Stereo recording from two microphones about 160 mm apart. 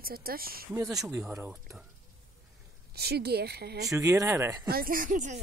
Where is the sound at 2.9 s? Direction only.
85° right.